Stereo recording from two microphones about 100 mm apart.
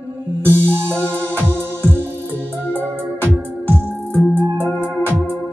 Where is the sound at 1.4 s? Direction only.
20° right (ahead or behind).